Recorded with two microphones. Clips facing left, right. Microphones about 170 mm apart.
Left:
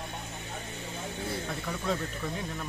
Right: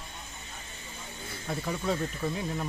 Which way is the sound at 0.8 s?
70° left (ahead or behind).